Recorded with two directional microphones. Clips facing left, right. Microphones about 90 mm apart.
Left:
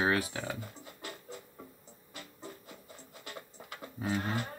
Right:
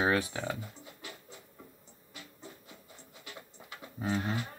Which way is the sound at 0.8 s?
45° left (ahead or behind).